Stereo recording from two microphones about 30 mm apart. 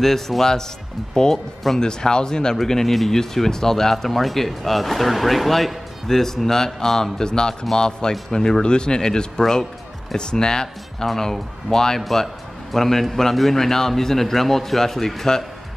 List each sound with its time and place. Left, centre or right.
0.4 s speech: centre
1.3 s a man's voice: centre
1.8 s speech: left
2.5 s a man's voice: centre
3.9 s a man's voice: centre